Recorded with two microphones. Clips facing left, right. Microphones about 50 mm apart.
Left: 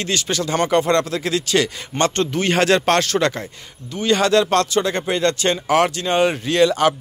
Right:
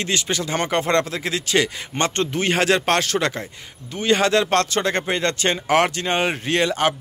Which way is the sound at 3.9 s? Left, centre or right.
Right.